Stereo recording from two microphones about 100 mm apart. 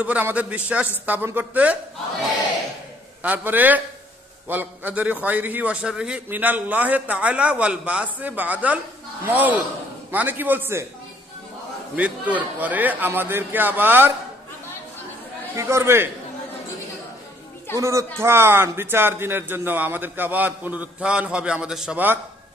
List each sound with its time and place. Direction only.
0.0 s a man's voice: 15° right (ahead or behind)
3.2 s a man's voice: 15° right (ahead or behind)
11.9 s speech: 15° right (ahead or behind)
15.5 s speech: 30° right (ahead or behind)
17.7 s speech: 30° right (ahead or behind); by 21.9 s 5° right (ahead or behind)
21.9 s speech: 20° right (ahead or behind)